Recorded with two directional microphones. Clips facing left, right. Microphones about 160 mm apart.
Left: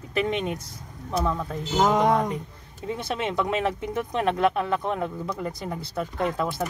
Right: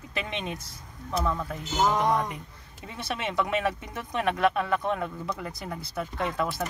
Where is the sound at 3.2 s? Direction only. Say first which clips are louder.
Left 1 dB; 30° left (ahead or behind).